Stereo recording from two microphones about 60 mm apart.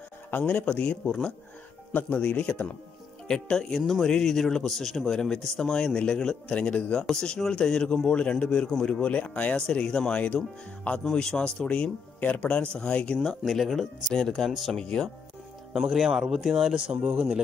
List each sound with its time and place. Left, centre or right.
0.3 s speech: left
2.0 s speech: left
3.3 s speech: centre
7.0 s speech: centre
11.1 s speech: centre
13.4 s speech: centre
15.7 s speech: centre